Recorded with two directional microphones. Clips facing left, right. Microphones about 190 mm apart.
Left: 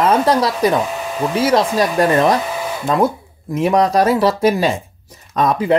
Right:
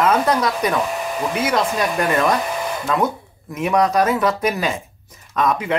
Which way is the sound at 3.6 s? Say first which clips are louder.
Left 3 dB; 35° left (ahead or behind).